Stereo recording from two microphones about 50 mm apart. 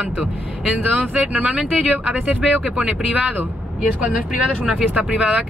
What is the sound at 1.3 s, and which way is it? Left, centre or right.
Speech, right.